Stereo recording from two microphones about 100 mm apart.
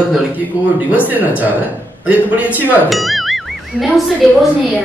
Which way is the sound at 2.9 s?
Centre (ahead or behind).